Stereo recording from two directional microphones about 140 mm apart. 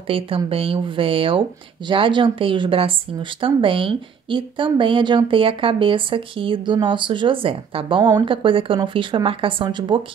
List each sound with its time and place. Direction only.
0.1 s speech: 40° right (ahead or behind)